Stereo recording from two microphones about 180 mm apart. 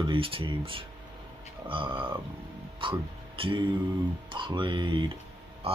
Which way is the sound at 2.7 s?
30° right (ahead or behind).